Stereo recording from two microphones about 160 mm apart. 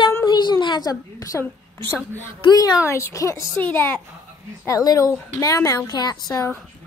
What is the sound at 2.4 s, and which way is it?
A woman's voice, 25° left (ahead or behind).